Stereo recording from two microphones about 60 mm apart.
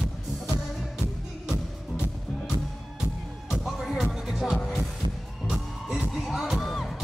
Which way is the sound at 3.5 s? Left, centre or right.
Centre.